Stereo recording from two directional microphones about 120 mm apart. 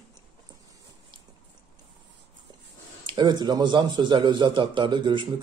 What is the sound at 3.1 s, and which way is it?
Speech, 40° right (ahead or behind).